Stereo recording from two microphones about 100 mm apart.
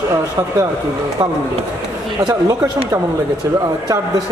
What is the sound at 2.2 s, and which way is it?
Speech, 35° right (ahead or behind).